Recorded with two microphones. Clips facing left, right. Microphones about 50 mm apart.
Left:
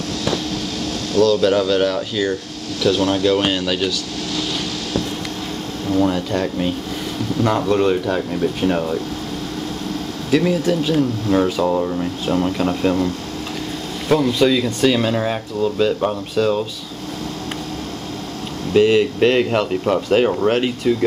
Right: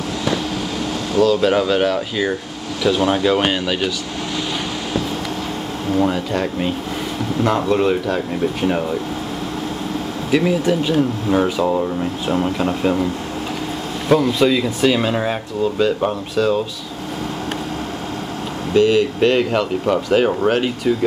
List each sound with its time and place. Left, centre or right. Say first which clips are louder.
1.1 s speech: even; centre
5.9 s speech: even; right
10.3 s speech: even; centre
11.0 s speech: even; right
11.4 s speech: even; centre
18.7 s speech: even; centre